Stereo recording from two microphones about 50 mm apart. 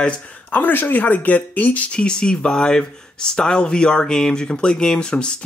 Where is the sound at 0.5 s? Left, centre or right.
Left.